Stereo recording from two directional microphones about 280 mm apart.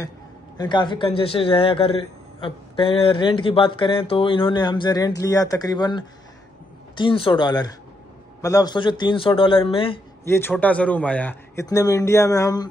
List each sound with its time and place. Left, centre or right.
0.6 s a man's voice: centre
10.3 s a man's voice: centre